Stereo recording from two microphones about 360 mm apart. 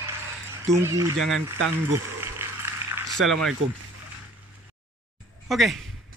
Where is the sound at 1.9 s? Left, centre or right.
Centre.